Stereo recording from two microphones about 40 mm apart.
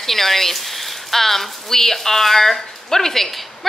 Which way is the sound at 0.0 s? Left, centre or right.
Centre.